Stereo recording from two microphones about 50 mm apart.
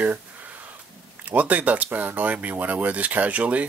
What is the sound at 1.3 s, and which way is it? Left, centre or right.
Speech, right.